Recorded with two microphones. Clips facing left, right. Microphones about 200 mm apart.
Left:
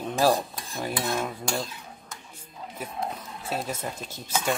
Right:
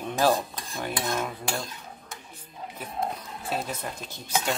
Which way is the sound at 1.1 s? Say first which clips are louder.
Left 1 dB; 5° left (ahead or behind).